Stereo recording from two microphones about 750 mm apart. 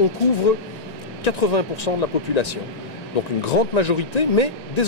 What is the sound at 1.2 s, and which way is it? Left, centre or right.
Speech, left.